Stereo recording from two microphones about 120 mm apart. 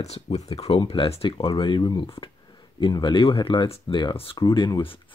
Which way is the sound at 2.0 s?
50° left (ahead or behind).